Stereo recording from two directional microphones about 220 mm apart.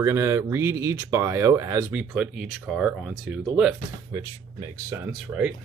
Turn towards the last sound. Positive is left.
turn(degrees=-5)  # may be behind; listen again after turning